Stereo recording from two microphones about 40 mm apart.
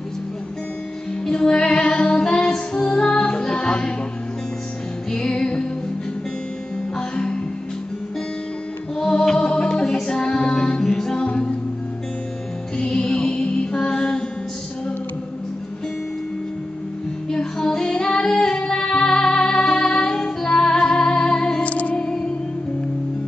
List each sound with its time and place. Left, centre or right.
1.3 s music: centre
5.1 s music: left
7.0 s music: left
8.9 s music: centre
12.7 s music: left
17.3 s female singing: centre
21.6 s music: left
21.9 s music: left